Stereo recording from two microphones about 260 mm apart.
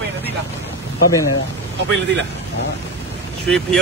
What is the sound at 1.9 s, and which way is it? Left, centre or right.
Speech, right.